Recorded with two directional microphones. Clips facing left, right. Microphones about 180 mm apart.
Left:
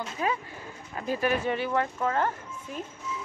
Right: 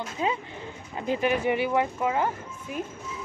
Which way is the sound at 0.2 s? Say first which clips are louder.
Right 2 dB; 20° right (ahead or behind).